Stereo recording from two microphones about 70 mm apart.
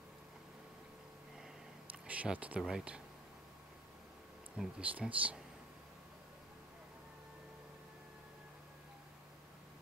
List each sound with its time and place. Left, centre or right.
2.0 s speech: centre
4.6 s speech: centre